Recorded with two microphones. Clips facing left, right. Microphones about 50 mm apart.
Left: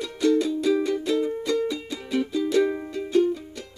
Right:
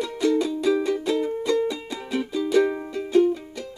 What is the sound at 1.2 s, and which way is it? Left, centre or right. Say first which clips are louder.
Music: right 1 dB; centre.